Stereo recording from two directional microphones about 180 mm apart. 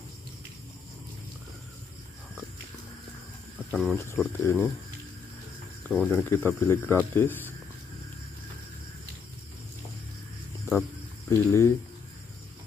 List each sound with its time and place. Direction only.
3.7 s speech: centre (ahead or behind)
4.0 s speech: 15° left (ahead or behind)
5.9 s speech: centre (ahead or behind)
6.3 s speech: 10° left (ahead or behind)
11.2 s speech: 15° left (ahead or behind)